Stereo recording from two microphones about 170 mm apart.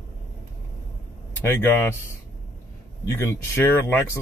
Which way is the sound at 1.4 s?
15° left (ahead or behind).